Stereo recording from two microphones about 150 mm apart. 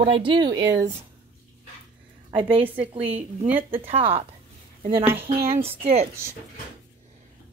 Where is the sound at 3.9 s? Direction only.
40° right (ahead or behind).